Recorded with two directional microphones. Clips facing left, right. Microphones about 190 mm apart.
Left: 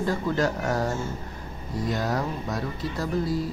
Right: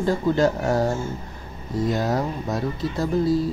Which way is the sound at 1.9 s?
25° right (ahead or behind).